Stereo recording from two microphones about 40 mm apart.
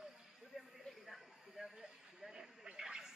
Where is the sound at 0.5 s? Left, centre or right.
Centre.